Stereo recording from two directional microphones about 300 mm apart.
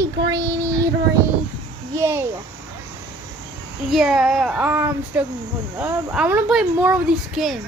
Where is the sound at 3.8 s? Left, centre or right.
Centre.